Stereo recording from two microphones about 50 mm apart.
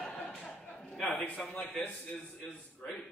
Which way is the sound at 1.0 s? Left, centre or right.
Left.